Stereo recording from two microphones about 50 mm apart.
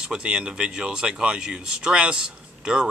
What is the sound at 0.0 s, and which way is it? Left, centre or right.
Speech, centre.